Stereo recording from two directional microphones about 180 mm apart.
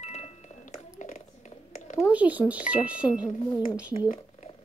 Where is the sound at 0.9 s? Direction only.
40° left (ahead or behind).